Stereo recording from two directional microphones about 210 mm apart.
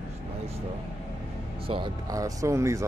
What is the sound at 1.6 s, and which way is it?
Speech, 25° right (ahead or behind).